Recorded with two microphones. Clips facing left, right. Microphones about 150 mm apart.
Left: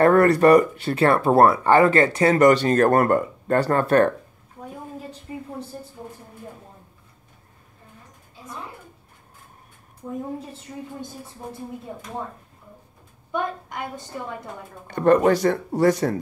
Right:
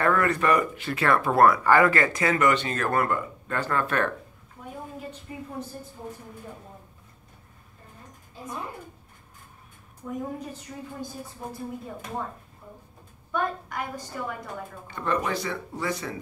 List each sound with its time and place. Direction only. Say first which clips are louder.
0.0 s speech: left 9 dB; 40° left (ahead or behind)
13.3 s a woman's voice: left 1 dB; 20° left (ahead or behind)
14.9 s speech: left 11 dB; 50° left (ahead or behind)